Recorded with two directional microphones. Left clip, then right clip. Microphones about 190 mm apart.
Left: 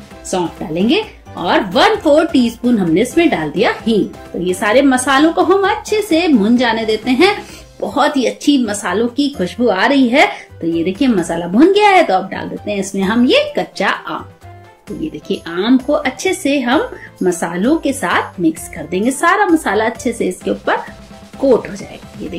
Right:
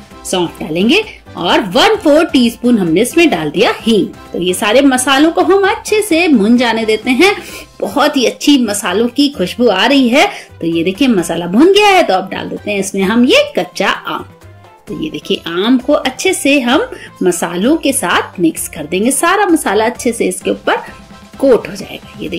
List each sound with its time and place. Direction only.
0.3 s speech: 30° right (ahead or behind)
15.1 s speech: 30° right (ahead or behind)